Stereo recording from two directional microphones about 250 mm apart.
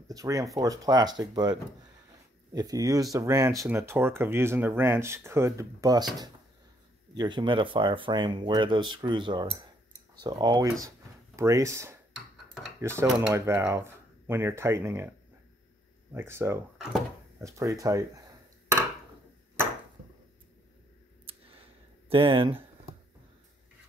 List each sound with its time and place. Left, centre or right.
0.1 s speech: centre
7.2 s speech: centre
16.1 s speech: centre
21.3 s a sound: right
22.1 s speech: right